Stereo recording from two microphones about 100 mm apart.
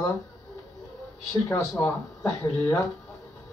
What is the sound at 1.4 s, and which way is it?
Speech, 30° left (ahead or behind).